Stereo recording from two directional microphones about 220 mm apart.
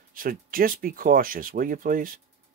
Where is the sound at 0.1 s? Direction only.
40° right (ahead or behind).